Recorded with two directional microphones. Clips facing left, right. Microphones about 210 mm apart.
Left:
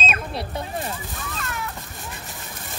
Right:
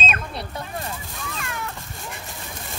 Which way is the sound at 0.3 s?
25° left (ahead or behind).